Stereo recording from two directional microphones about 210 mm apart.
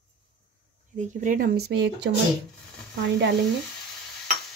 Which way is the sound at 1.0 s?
35° right (ahead or behind).